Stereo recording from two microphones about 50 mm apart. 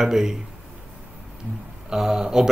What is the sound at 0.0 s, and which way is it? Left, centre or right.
Speech, centre.